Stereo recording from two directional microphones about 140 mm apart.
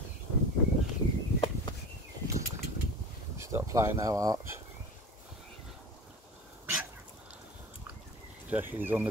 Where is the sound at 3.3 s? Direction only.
20° right (ahead or behind).